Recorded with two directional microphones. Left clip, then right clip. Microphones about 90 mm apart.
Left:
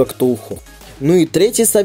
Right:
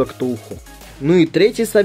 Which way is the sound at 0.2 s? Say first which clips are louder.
Left 6 dB; 35° left (ahead or behind).